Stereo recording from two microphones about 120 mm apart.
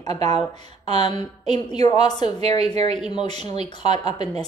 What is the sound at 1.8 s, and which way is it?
Speech, 35° left (ahead or behind).